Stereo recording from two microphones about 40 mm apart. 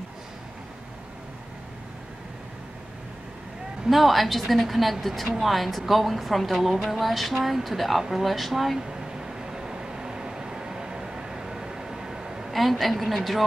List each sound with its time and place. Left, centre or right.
3.9 s a woman's voice: centre
8.7 s vehicle: centre
12.5 s a woman's voice: centre